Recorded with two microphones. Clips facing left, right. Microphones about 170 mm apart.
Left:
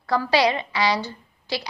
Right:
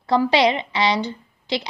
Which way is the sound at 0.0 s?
20° right (ahead or behind).